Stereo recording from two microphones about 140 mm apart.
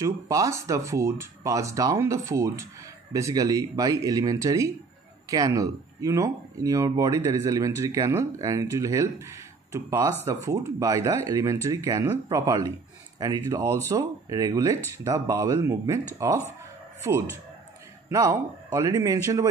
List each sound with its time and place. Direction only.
0.0 s speech: 20° right (ahead or behind)
18.1 s speech: 25° right (ahead or behind)